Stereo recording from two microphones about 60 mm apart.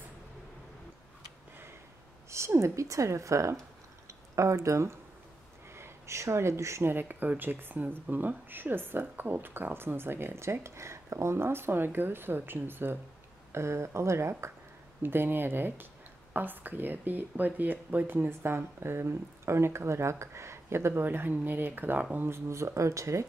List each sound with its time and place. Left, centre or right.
2.2 s a woman's voice: right
6.9 s speech: right
13.5 s speech: right
15.0 s speech: right
21.0 s speech: right
22.5 s a woman's voice: right